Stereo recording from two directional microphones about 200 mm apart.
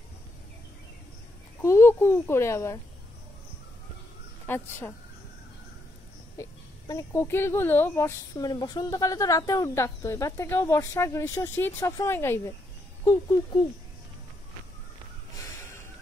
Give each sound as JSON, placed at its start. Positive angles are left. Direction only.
{"t": 1.6, "sound": "a child's voice", "side_deg": 15}
{"t": 4.5, "sound": "speech", "side_deg": 10}
{"t": 6.3, "sound": "speech", "side_deg": 15}